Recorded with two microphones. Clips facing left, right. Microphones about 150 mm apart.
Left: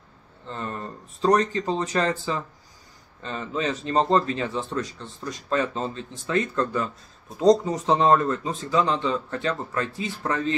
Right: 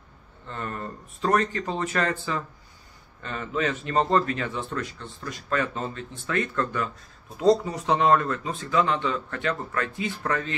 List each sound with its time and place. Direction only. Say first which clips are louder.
0.5 s speech: left 1 dB; 25° left (ahead or behind)
8.7 s speech: left 1 dB; 35° left (ahead or behind)